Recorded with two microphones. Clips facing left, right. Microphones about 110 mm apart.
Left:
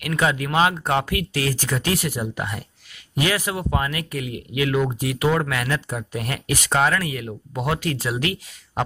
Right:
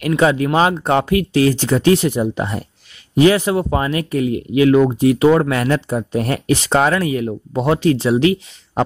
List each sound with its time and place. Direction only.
0.0 s speech: 30° right (ahead or behind)